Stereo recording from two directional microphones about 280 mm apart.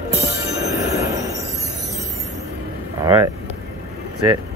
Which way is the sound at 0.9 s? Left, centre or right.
Centre.